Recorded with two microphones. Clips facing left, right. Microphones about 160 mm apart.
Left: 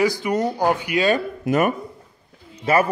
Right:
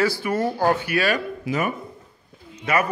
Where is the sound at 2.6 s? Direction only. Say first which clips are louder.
Left 4 dB; 30° left (ahead or behind).